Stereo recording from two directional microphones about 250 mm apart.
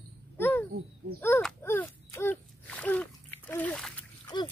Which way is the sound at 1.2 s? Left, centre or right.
Centre.